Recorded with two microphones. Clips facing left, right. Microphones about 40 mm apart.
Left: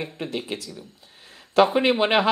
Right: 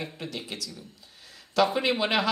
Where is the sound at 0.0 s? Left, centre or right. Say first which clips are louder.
Left 6 dB; left.